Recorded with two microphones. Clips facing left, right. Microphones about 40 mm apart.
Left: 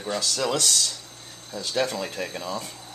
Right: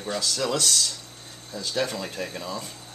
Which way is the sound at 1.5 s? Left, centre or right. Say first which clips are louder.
Left 1 dB; left.